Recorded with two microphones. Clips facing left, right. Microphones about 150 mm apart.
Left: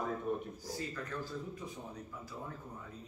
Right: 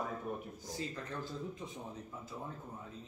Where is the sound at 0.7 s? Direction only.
20° right (ahead or behind).